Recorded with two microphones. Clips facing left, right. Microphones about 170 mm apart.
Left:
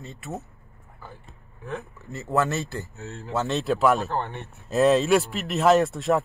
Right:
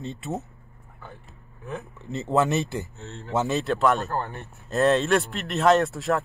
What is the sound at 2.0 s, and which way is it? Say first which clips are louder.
Speech: right 2 dB; 20° right (ahead or behind).